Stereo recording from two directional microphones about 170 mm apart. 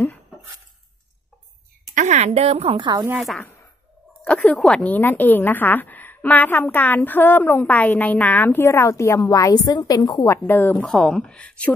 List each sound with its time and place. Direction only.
2.0 s speech: 40° right (ahead or behind); by 3.1 s 25° right (ahead or behind)
3.1 s a woman's voice: centre (ahead or behind)
10.8 s a woman's voice: centre (ahead or behind)